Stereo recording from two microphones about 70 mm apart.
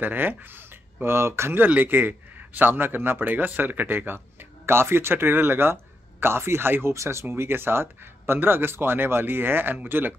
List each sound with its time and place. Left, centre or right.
0.0 s a man's voice: right